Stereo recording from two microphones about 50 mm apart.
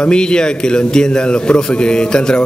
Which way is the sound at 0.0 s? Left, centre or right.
Centre.